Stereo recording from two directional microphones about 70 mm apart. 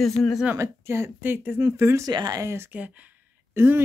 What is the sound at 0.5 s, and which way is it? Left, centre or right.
Speech, right.